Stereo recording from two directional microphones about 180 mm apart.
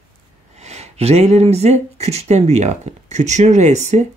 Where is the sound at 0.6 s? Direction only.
35° right (ahead or behind).